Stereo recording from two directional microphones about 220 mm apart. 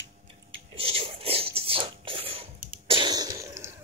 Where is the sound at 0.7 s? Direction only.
25° right (ahead or behind).